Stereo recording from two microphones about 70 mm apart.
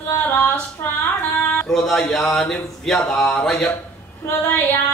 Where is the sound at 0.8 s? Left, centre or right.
Left.